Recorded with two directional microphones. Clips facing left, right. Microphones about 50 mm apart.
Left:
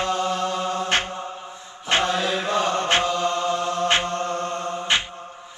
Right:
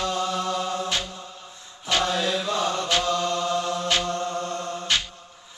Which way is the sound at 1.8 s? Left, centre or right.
Left.